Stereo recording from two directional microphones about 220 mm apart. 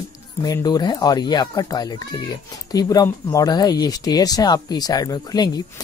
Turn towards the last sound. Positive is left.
turn(degrees=15)  # may be behind; listen again after turning